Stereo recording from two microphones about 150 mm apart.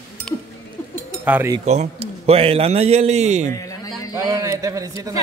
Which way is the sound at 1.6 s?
50° right (ahead or behind).